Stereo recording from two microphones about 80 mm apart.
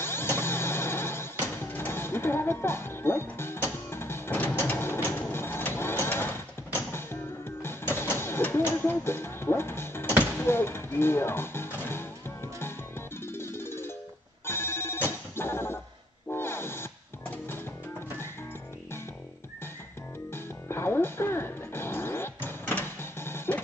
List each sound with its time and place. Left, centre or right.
0.0 s vehicle: left
10.4 s music: left
13.3 s music: left
14.4 s telephone bell ringing: left
15.3 s music: left
16.3 s vehicle: left
20.3 s music: left